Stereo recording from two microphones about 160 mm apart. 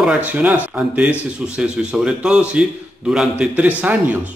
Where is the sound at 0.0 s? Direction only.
5° right (ahead or behind).